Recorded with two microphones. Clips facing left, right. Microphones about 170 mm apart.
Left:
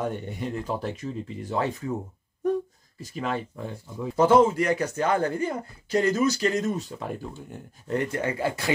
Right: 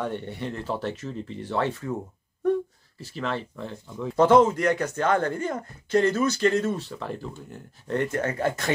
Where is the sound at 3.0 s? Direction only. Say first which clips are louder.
Left 1 dB; 15° left (ahead or behind).